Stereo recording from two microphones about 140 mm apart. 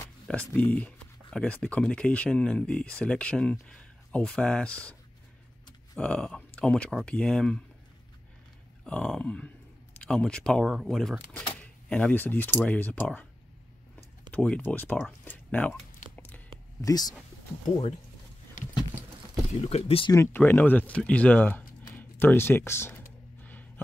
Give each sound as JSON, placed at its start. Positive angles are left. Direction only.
{"t": 0.5, "sound": "speech", "side_deg": 10}
{"t": 5.9, "sound": "speech", "side_deg": 5}
{"t": 8.8, "sound": "speech", "side_deg": 5}
{"t": 11.5, "sound": "a sound", "side_deg": 10}
{"t": 12.6, "sound": "speech", "side_deg": 10}
{"t": 14.3, "sound": "speech", "side_deg": 10}
{"t": 16.8, "sound": "speech", "side_deg": 30}
{"t": 19.7, "sound": "speech", "side_deg": 45}
{"t": 20.3, "sound": "speech", "side_deg": 15}